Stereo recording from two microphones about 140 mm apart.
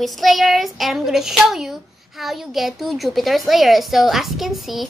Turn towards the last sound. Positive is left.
turn(degrees=0)  # may be behind; listen again after turning